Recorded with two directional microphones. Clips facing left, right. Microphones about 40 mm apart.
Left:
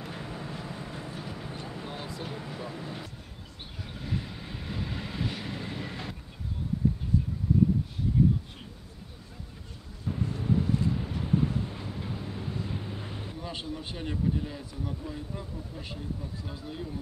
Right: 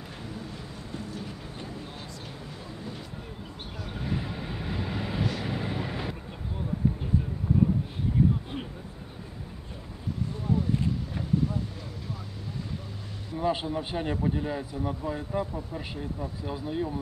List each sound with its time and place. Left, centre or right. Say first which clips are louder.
0.2 s vehicle: left 1 dB; left
2.3 s vehicle: left 3 dB; left
3.9 s vehicle: right 3 dB; centre
13.4 s a man's voice: right 11 dB; centre
16.4 s speech: right 11 dB; centre